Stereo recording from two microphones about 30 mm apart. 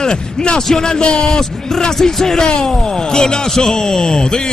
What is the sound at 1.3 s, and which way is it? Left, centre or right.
Speech, left.